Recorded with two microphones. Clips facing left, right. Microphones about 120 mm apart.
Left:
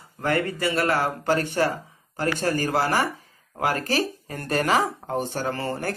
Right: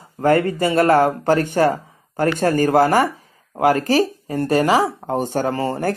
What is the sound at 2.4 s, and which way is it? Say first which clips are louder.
Speech: right 10 dB; 50° right (ahead or behind).